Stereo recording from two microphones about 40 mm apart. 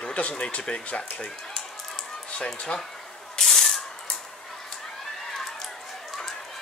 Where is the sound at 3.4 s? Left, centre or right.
Centre.